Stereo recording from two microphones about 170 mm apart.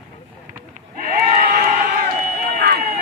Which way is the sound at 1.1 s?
60° right (ahead or behind).